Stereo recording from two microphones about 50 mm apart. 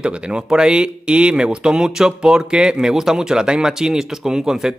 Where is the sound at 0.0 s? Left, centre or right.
Right.